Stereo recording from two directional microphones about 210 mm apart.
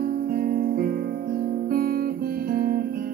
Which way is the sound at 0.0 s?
45° right (ahead or behind).